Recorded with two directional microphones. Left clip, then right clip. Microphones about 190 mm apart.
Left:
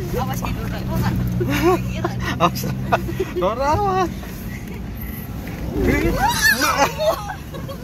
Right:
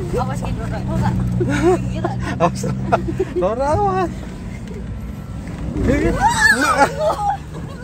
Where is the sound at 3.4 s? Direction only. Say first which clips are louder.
Right 1 dB; 15° right (ahead or behind).